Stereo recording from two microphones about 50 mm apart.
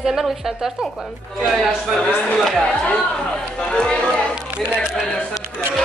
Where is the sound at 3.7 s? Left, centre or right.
Centre.